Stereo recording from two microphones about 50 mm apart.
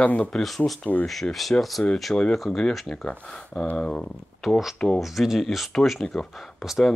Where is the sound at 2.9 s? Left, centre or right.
Centre.